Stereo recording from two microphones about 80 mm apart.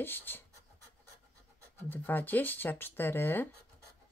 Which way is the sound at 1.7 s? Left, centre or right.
Left.